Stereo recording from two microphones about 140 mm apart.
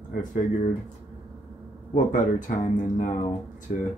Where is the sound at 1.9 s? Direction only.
65° left (ahead or behind).